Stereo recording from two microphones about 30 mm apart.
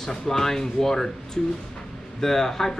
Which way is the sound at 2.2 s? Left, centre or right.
Centre.